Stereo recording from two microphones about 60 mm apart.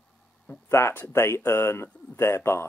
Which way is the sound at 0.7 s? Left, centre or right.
Left.